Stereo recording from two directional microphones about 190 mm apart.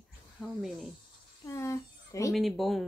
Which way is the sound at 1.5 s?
15° left (ahead or behind).